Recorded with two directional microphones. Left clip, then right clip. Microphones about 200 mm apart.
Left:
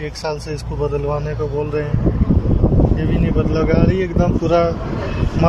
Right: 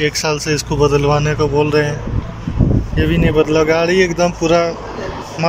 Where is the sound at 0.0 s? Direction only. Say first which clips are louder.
Right 7 dB; centre (ahead or behind).